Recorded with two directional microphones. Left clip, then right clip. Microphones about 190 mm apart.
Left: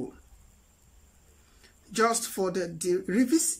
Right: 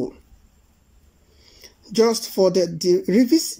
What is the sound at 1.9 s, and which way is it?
Speech, 15° right (ahead or behind).